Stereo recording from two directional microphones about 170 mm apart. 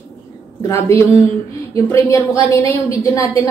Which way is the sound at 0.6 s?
15° left (ahead or behind).